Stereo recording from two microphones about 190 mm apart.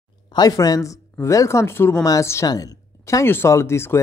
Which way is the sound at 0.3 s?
20° left (ahead or behind).